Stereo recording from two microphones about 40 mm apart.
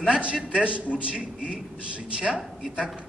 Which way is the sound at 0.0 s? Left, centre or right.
Right.